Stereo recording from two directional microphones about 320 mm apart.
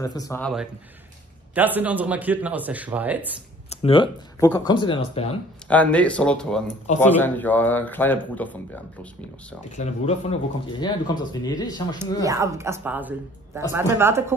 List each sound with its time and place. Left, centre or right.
0.0 s a man's voice: centre
3.7 s speech: centre
5.7 s a man's voice: centre
9.8 s speech: left
12.0 s speech: centre